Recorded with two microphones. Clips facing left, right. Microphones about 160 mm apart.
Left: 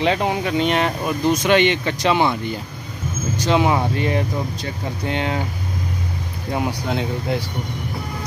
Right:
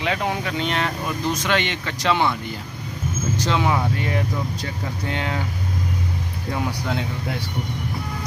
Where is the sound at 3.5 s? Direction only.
25° left (ahead or behind).